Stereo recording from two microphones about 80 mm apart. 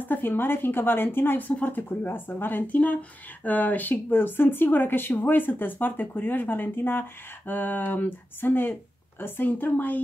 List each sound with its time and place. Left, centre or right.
0.0 s speech: left